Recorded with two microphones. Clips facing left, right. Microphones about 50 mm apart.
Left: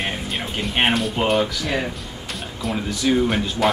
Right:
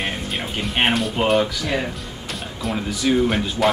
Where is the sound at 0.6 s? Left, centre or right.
Centre.